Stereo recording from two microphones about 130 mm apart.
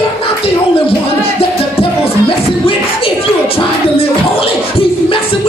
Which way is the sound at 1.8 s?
45° left (ahead or behind).